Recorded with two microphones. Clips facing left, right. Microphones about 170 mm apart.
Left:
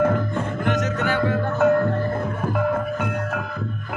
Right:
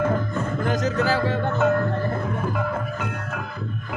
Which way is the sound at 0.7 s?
30° right (ahead or behind).